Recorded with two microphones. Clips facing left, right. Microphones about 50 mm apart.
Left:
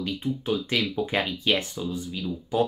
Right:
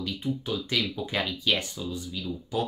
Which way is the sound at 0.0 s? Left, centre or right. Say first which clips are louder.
Left 2 dB; left.